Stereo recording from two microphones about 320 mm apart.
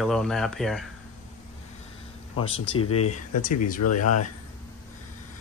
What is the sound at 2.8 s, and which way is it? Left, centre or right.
Speech, left.